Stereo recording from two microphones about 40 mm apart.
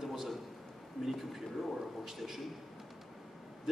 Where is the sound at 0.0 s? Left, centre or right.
Centre.